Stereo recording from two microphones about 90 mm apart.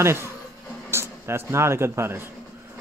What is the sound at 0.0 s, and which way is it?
Speech, 30° right (ahead or behind).